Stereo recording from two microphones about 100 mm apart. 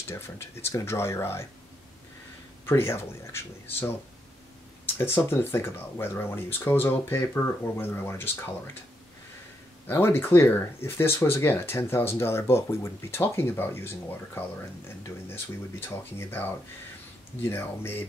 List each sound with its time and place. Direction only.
0.1 s speech: 25° left (ahead or behind)
2.6 s speech: 25° left (ahead or behind)
4.9 s speech: 25° left (ahead or behind)
9.8 s speech: 25° left (ahead or behind)